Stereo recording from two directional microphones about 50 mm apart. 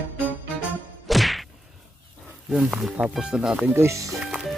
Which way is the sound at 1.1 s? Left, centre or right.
Centre.